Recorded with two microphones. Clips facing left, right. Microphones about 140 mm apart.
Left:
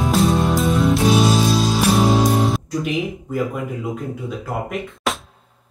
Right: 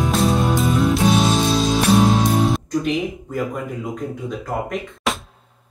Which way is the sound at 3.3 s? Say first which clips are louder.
Left 3 dB; 5° left (ahead or behind).